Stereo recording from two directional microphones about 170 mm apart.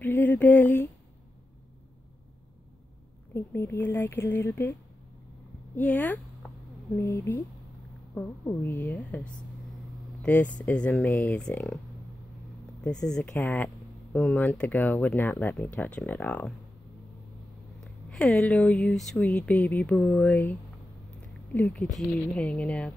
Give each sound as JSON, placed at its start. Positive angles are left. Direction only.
{"t": 0.0, "sound": "a sound", "side_deg": 10}
{"t": 3.3, "sound": "speech", "side_deg": 15}
{"t": 5.8, "sound": "speech", "side_deg": 10}
{"t": 12.8, "sound": "speech", "side_deg": 5}
{"t": 17.7, "sound": "speech", "side_deg": 0}
{"t": 21.5, "sound": "speech", "side_deg": 5}